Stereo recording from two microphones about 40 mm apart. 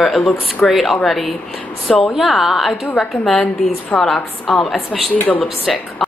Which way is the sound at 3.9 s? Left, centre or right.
Left.